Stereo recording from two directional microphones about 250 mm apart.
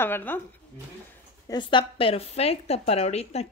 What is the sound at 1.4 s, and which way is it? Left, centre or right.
A woman's voice, centre.